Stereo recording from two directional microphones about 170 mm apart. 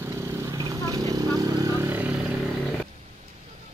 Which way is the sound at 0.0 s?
15° right (ahead or behind).